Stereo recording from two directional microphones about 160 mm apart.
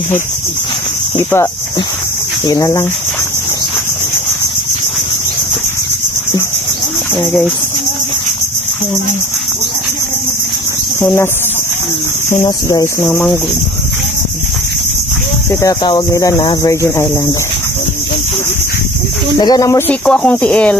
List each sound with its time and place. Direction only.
2.4 s speech: 20° left (ahead or behind)
11.0 s speech: 15° left (ahead or behind)
12.4 s speech: 25° left (ahead or behind)
13.0 s speech: 10° left (ahead or behind)
15.6 s speech: 25° left (ahead or behind)
19.3 s speech: 25° left (ahead or behind)
19.9 s speech: 10° left (ahead or behind)